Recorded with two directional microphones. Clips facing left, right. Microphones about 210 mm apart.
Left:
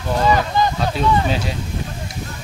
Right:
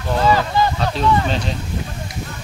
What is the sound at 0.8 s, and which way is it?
Speech, 5° left (ahead or behind).